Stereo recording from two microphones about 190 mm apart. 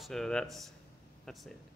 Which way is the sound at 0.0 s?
Centre (ahead or behind).